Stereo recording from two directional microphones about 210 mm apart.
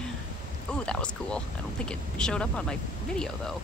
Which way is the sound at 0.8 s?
5° left (ahead or behind).